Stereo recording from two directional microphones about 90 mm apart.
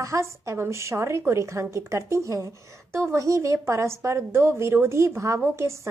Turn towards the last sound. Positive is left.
turn(degrees=-30)  # may be behind; listen again after turning